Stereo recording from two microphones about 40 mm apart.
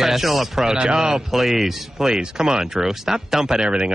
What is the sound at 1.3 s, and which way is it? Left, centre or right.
Speech, centre.